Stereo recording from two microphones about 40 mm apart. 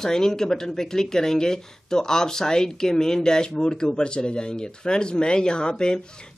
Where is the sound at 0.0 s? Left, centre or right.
Centre.